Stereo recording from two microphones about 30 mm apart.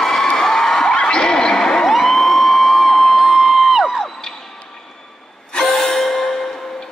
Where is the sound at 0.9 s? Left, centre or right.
Left.